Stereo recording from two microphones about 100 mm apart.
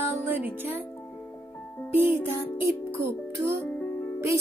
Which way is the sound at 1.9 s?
20° right (ahead or behind).